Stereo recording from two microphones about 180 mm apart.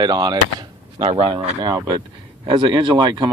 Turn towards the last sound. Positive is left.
turn(degrees=-25)  # may be behind; listen again after turning